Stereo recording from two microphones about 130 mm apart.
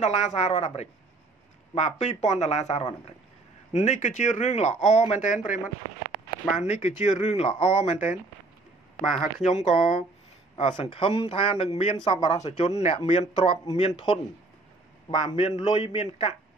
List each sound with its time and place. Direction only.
0.0 s speech: 60° left (ahead or behind); by 5.6 s 75° left (ahead or behind)
6.6 s speech: 65° left (ahead or behind)
9.0 s speech: centre (ahead or behind)
9.7 s speech: 65° left (ahead or behind)
10.6 s a man's voice: 45° left (ahead or behind)